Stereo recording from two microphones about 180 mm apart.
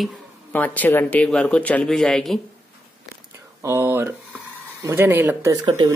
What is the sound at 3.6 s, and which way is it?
Speech, 15° right (ahead or behind).